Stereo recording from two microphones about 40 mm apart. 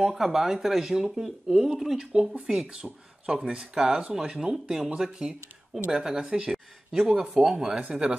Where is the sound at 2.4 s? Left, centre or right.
Right.